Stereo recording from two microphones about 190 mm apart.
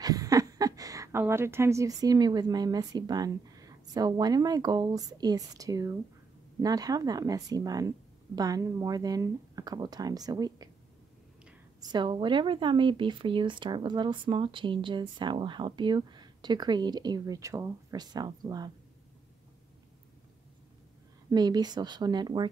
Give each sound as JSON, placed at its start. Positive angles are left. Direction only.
{"t": 0.0, "sound": "speech", "side_deg": -20}
{"t": 11.8, "sound": "speech", "side_deg": -25}
{"t": 21.3, "sound": "speech", "side_deg": -20}